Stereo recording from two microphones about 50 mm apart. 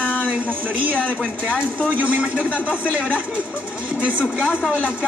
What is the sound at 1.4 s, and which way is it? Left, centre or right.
A man's voice, right.